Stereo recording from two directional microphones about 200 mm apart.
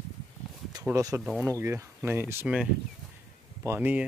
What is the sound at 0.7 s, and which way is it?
Speech, 15° right (ahead or behind).